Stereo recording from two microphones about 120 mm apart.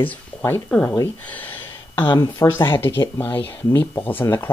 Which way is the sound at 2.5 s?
20° left (ahead or behind).